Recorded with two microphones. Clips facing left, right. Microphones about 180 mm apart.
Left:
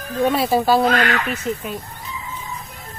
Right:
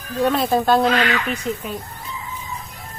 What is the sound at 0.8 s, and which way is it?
Speech, 45° left (ahead or behind).